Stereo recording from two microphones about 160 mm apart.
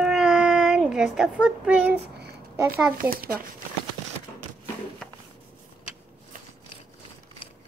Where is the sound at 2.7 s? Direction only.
65° right (ahead or behind).